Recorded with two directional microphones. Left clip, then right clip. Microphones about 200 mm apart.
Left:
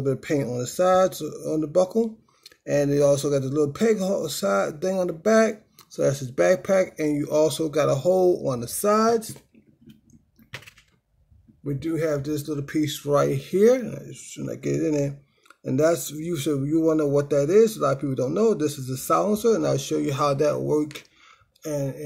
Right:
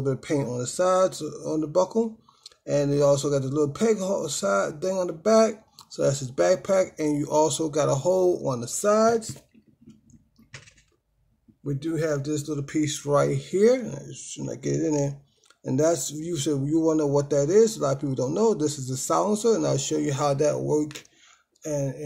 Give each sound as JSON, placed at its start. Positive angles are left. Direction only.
{"t": 0.0, "sound": "speech", "side_deg": 10}
{"t": 10.5, "sound": "computer keyboard", "side_deg": 30}
{"t": 11.6, "sound": "speech", "side_deg": 10}